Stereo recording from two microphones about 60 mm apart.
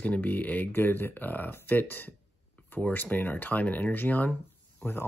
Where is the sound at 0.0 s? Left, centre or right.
Left.